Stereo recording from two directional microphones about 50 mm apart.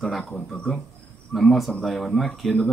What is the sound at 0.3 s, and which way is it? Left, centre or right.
Speech, centre.